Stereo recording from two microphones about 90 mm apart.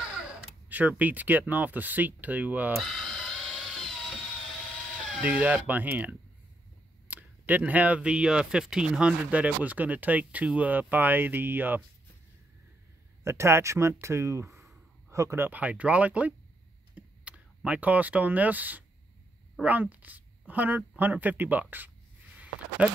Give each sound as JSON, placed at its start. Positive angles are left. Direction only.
{"t": 0.0, "sound": "speech", "side_deg": -10}
{"t": 2.8, "sound": "a sound", "side_deg": 0}
{"t": 5.2, "sound": "speech", "side_deg": -15}
{"t": 13.2, "sound": "speech", "side_deg": -30}
{"t": 16.9, "sound": "computer keyboard", "side_deg": -15}
{"t": 17.6, "sound": "a woman's voice", "side_deg": -15}